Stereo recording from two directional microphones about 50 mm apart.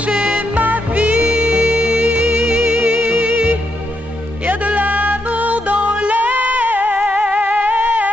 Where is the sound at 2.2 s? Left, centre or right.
Right.